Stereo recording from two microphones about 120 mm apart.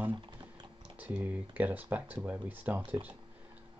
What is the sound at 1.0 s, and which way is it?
Speech, 15° right (ahead or behind).